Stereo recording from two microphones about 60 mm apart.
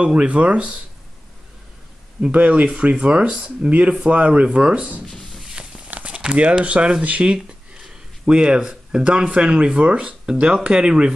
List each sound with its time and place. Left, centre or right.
0.0 s speech: centre
2.3 s speech: right